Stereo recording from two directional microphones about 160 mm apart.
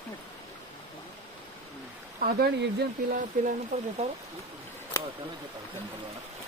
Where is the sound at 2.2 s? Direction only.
85° right.